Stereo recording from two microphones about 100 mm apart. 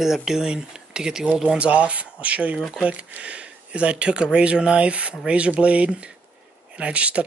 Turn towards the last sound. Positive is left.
turn(degrees=-10)  # may be behind; listen again after turning